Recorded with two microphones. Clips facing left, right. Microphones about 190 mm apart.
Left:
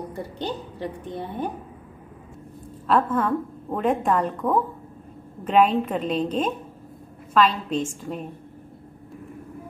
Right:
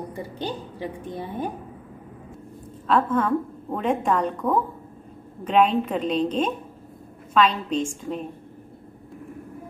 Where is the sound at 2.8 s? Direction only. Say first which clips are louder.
Even; 5° left (ahead or behind).